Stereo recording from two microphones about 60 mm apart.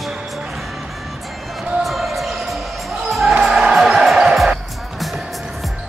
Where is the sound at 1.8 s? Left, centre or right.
Centre.